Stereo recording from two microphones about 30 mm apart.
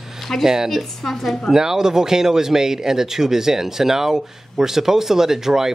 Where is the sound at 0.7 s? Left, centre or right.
Centre.